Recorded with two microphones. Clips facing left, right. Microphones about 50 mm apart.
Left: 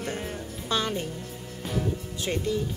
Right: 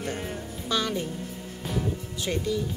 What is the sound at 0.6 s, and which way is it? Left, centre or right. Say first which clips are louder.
Speech: even; left.